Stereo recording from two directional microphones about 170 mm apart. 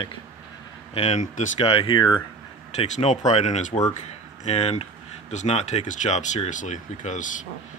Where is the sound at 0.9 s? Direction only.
40° left (ahead or behind).